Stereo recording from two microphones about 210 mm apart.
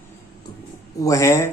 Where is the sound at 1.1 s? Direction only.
15° left (ahead or behind).